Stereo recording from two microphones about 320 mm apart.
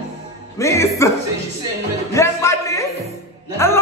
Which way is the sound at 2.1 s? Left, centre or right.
Centre.